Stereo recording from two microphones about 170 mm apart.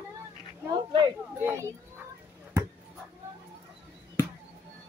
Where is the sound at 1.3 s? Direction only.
15° right (ahead or behind).